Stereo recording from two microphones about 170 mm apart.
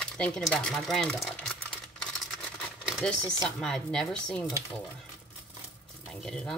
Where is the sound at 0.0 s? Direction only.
5° left (ahead or behind).